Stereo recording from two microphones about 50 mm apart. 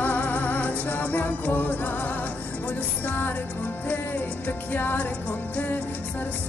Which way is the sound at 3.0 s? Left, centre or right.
Left.